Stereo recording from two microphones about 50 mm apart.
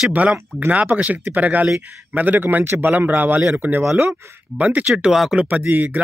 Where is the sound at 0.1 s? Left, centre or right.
Right.